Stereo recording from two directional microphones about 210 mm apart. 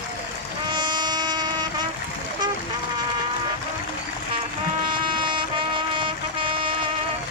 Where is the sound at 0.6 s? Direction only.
20° right (ahead or behind).